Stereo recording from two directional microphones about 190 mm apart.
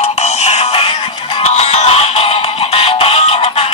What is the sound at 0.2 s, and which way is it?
Music, 35° left (ahead or behind).